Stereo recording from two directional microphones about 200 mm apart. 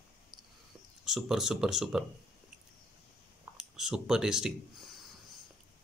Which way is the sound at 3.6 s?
5° right (ahead or behind).